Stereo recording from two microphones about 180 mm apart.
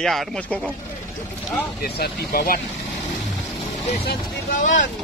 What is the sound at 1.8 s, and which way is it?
Speech, 60° left (ahead or behind).